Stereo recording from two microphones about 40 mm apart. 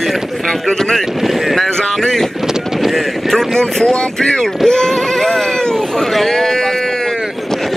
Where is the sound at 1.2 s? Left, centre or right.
Centre.